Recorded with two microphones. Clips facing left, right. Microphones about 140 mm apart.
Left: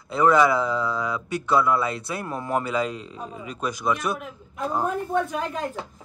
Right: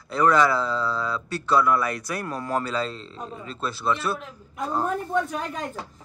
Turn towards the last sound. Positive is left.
turn(degrees=0)  # may be behind; listen again after turning